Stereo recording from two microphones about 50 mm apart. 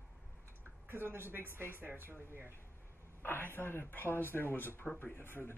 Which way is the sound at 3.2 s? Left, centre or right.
Left.